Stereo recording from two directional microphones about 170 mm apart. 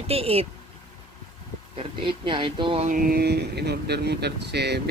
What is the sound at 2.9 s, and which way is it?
Speech, 60° right (ahead or behind).